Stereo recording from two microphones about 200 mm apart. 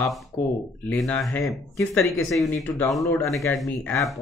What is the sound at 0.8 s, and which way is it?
Speech, 10° left (ahead or behind).